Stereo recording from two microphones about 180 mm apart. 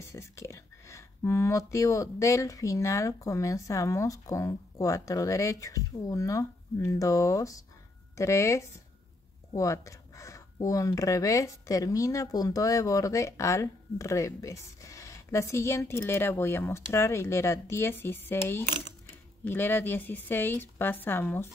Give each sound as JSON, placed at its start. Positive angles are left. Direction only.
{"t": 0.0, "sound": "speech", "side_deg": 15}